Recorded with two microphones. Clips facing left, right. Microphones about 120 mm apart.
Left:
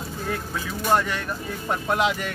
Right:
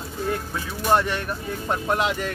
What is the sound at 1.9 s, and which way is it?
Speech, 5° left (ahead or behind).